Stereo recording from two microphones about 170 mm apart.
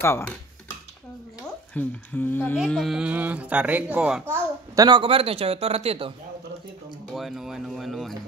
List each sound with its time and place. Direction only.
0.0 s speech: 15° left (ahead or behind)
1.7 s speech: 10° left (ahead or behind)
2.5 s speech: centre (ahead or behind)
4.7 s a man's voice: 25° right (ahead or behind)
7.2 s speech: centre (ahead or behind)